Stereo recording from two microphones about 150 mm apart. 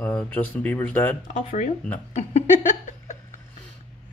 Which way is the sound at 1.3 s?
55° left (ahead or behind).